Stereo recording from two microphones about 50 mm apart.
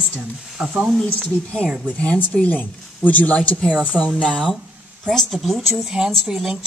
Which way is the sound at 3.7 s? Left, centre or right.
Centre.